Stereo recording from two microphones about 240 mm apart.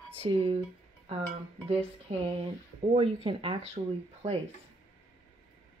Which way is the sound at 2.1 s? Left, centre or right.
Right.